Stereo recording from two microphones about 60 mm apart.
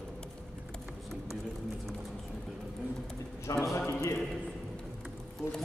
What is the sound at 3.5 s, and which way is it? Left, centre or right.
Speech, left.